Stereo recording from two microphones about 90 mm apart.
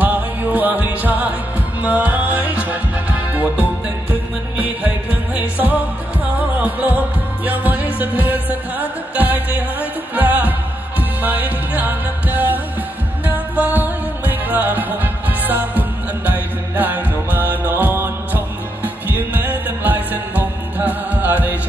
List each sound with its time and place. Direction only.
0.0 s music: 20° right (ahead or behind)